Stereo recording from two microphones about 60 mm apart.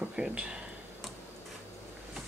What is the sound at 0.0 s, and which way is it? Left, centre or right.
Speech, centre.